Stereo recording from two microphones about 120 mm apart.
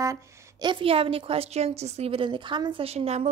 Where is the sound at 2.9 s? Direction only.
65° right (ahead or behind).